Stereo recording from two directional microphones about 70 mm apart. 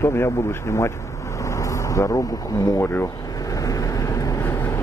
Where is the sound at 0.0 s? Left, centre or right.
Left.